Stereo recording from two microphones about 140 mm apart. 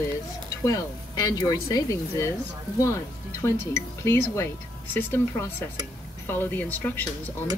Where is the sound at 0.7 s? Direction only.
25° left (ahead or behind).